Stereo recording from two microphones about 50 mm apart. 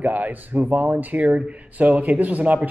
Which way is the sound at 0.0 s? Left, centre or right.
Right.